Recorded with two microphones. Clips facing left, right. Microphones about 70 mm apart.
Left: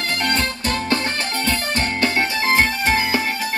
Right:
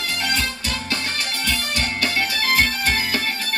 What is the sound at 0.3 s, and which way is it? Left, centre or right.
Music, left.